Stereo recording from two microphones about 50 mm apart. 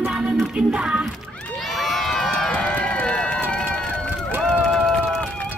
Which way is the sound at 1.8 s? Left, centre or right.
Centre.